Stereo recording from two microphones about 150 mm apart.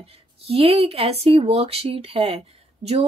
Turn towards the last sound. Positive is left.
turn(degrees=-45)  # may be behind; listen again after turning